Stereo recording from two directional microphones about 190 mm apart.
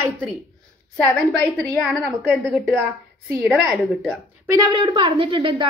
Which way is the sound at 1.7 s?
5° left (ahead or behind).